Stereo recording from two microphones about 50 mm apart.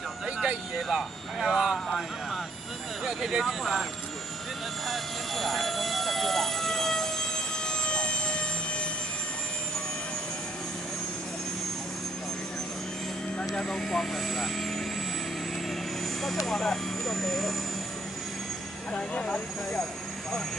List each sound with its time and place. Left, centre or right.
0.7 s speech: centre
3.1 s speech: centre
4.8 s vehicle: centre; by 8.8 s left
13.4 s speech: centre
16.2 s speech: centre
18.9 s speech: left
19.3 s speech: centre